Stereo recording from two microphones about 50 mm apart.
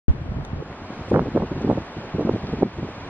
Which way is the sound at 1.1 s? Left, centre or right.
Right.